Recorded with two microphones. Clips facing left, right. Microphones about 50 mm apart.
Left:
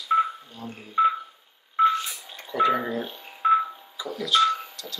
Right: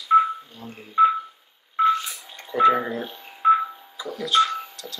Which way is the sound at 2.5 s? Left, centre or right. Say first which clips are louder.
Right 4 dB; centre.